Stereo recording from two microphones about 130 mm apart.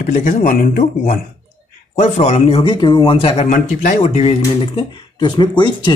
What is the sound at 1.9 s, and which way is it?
Speech, 65° left (ahead or behind).